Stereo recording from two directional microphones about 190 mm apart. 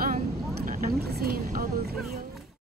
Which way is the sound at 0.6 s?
50° right (ahead or behind).